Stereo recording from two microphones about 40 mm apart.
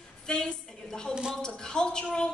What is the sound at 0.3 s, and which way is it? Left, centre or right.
A woman's voice, centre.